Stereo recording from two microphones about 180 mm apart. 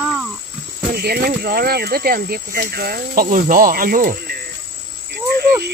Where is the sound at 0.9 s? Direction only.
60° right (ahead or behind).